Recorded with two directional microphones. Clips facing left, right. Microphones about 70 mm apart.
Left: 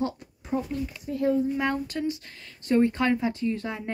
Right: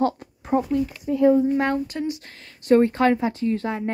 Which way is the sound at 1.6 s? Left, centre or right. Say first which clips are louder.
Right 4 dB; right.